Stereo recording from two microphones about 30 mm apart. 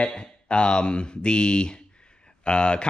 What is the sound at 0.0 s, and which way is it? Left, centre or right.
Speech, left.